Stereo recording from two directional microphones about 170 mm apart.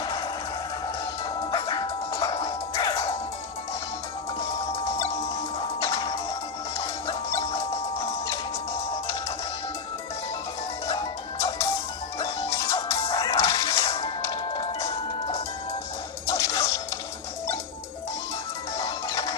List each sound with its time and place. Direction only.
1.4 s music: 25° left (ahead or behind)
12.4 s music: 15° left (ahead or behind)
16.3 s music: 20° left (ahead or behind)
18.9 s music: 20° left (ahead or behind)